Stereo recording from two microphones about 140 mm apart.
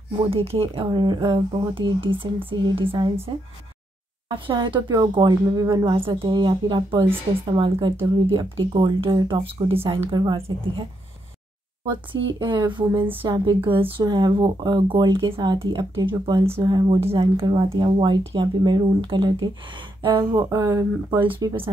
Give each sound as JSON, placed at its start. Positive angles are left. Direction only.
{"t": 0.3, "sound": "speech", "side_deg": -45}
{"t": 0.8, "sound": "speech", "side_deg": -30}
{"t": 11.9, "sound": "speech", "side_deg": -35}
{"t": 17.0, "sound": "speech", "side_deg": -40}
{"t": 21.2, "sound": "speech", "side_deg": -35}